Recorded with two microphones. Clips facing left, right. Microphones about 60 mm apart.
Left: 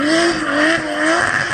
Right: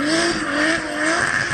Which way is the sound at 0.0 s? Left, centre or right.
Left.